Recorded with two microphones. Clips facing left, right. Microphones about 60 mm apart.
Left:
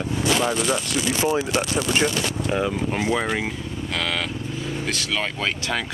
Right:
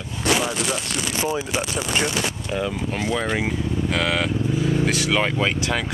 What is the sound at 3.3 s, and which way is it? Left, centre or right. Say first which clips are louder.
Speech: right 3 dB; centre.